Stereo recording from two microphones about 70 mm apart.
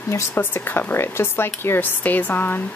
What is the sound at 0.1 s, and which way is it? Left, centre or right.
Speech, left.